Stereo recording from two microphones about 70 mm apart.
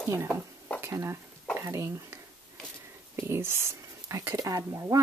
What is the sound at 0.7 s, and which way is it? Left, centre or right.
Stir, right.